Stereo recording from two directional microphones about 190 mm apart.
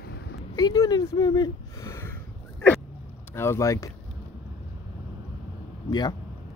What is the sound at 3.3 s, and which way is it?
Speech, 15° left (ahead or behind).